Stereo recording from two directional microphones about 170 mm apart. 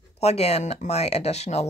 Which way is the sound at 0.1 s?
40° left (ahead or behind).